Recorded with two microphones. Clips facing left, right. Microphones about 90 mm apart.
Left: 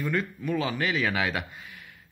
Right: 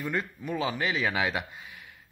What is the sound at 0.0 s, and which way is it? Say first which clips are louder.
Speech: left 3 dB; 20° right (ahead or behind).